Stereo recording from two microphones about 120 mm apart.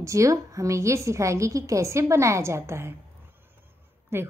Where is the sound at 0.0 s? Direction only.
25° right (ahead or behind).